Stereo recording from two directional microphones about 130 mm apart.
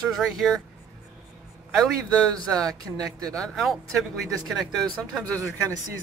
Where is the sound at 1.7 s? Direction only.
5° left (ahead or behind).